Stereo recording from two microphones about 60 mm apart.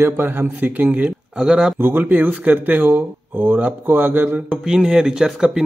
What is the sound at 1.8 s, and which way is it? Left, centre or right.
A man's voice, right.